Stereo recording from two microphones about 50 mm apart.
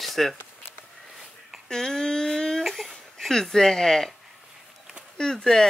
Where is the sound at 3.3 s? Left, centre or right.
Centre.